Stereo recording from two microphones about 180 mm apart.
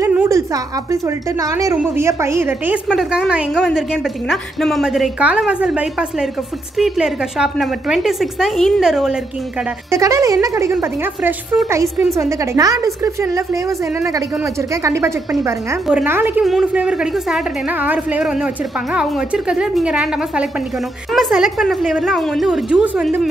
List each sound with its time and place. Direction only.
0.0 s a sound: 15° right (ahead or behind)
1.0 s a woman's voice: 15° right (ahead or behind)
9.8 s a woman's voice: 15° right (ahead or behind)